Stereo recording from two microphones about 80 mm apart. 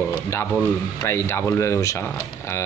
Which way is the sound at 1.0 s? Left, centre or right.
Left.